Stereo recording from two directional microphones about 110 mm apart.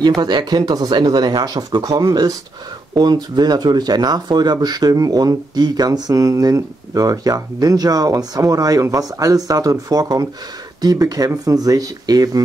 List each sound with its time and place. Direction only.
0.2 s speech: 40° right (ahead or behind)